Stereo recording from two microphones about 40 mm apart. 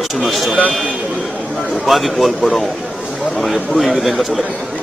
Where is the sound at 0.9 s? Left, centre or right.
Right.